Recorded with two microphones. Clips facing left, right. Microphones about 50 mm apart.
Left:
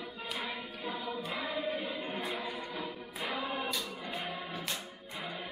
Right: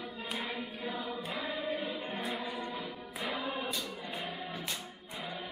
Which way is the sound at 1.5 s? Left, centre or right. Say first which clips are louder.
Even; centre.